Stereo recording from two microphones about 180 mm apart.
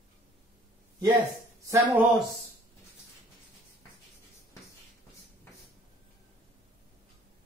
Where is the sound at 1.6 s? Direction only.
10° right (ahead or behind).